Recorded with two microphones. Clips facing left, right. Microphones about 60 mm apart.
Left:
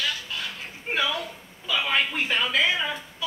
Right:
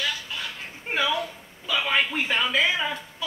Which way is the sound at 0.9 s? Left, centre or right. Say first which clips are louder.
Right 2 dB; centre.